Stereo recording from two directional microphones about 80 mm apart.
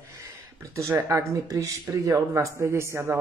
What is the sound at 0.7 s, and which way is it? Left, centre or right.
Speech, right.